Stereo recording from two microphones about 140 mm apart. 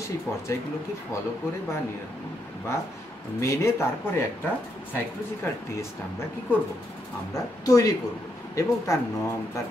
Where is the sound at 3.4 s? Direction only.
20° left (ahead or behind).